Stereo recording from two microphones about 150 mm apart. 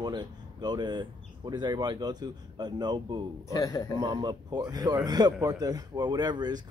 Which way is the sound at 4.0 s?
30° right (ahead or behind).